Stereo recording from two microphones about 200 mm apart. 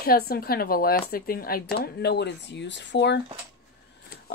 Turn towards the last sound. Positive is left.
turn(degrees=60)  # may be behind; listen again after turning